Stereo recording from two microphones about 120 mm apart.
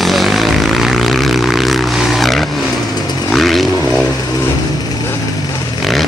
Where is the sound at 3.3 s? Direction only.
Centre (ahead or behind).